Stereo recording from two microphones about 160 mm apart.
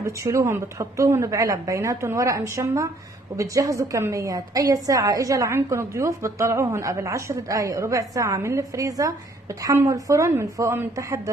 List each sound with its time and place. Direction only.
0.0 s a woman's voice: 20° right (ahead or behind)